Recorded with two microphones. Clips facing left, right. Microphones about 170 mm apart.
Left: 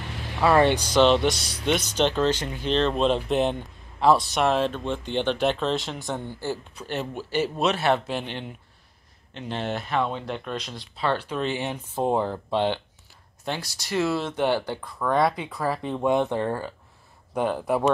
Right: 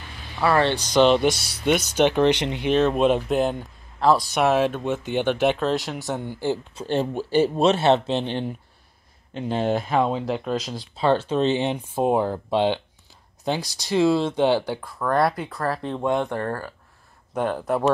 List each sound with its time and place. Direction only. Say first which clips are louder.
0.4 s speech: left 1 dB; 15° left (ahead or behind)
0.9 s speech: right 3 dB; centre (ahead or behind); by 2.7 s 20° right (ahead or behind)
2.7 s speech: right 3 dB; 10° right (ahead or behind)
6.4 s speech: right 5 dB; 20° right (ahead or behind)
10.4 s speech: right 6 dB; 35° right (ahead or behind); by 16.7 s 15° left (ahead or behind)
17.3 s speech: right 1 dB; centre (ahead or behind)